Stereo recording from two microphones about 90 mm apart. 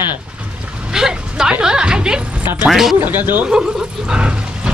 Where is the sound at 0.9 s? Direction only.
5° right (ahead or behind).